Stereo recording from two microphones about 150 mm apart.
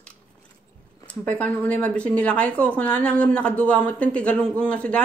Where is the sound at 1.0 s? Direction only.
10° left (ahead or behind).